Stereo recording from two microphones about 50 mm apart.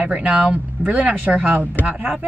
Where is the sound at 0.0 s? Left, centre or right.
Right.